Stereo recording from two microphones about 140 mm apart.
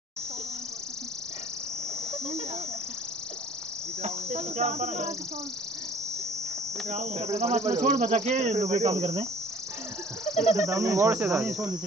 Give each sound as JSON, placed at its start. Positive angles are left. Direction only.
{"t": 4.0, "sound": "cricket", "side_deg": -50}
{"t": 6.9, "sound": "cricket", "side_deg": -50}
{"t": 7.3, "sound": "speech", "side_deg": -55}
{"t": 7.7, "sound": "cricket", "side_deg": -60}
{"t": 10.5, "sound": "cricket", "side_deg": -20}
{"t": 11.1, "sound": "cricket", "side_deg": -5}